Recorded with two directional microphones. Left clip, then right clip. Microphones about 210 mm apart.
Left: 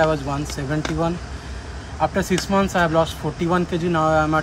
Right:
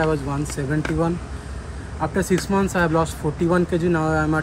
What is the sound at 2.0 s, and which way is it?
Speech, 15° left (ahead or behind).